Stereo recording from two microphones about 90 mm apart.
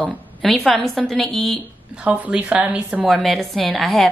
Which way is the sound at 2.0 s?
15° right (ahead or behind).